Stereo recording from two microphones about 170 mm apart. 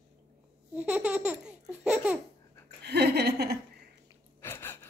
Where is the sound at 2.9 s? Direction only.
75° right (ahead or behind).